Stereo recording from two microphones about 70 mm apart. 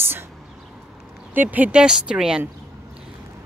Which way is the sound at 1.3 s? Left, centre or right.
Right.